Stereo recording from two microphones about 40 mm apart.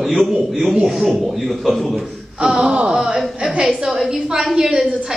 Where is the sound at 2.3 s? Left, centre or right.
Centre.